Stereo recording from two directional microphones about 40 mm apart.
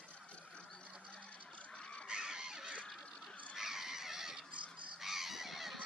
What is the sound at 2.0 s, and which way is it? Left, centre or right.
Goose, centre.